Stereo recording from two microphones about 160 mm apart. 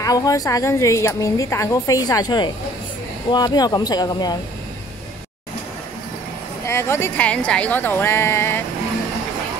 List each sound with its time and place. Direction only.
0.0 s a woman's voice: 20° left (ahead or behind)
6.6 s a woman's voice: 15° left (ahead or behind)